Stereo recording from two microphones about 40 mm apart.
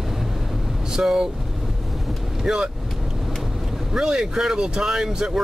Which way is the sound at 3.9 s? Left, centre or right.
Centre.